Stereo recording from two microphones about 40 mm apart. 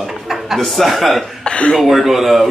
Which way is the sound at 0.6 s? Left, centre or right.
Centre.